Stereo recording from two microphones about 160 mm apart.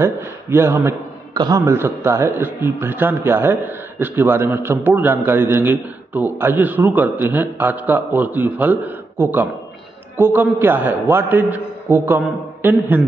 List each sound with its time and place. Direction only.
0.0 s a man's voice: 15° right (ahead or behind)